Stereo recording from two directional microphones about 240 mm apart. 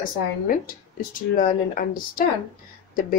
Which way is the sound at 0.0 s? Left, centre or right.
Left.